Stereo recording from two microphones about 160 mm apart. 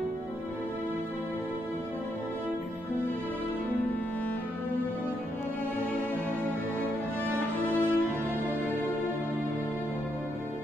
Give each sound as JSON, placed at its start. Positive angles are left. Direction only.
{"t": 7.3, "sound": "music", "side_deg": 10}